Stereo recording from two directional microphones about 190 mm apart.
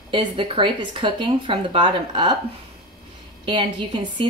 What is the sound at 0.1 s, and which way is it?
A woman's voice, 25° right (ahead or behind).